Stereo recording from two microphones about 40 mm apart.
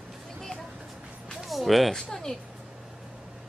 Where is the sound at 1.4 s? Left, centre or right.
Centre.